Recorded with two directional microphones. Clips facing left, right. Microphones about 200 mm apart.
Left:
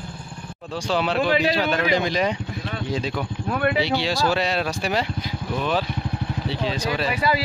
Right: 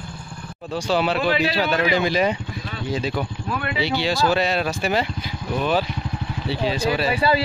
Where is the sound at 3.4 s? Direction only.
50° left (ahead or behind).